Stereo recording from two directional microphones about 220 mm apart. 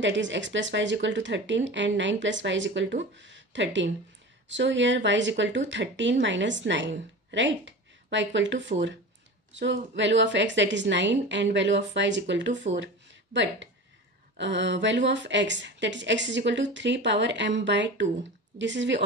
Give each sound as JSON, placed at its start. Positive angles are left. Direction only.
{"t": 0.0, "sound": "a woman's voice", "side_deg": -55}